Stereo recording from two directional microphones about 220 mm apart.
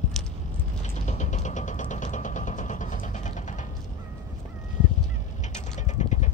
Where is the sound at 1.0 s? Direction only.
35° left (ahead or behind).